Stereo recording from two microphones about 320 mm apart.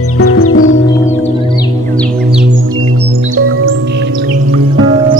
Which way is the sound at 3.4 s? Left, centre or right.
Right.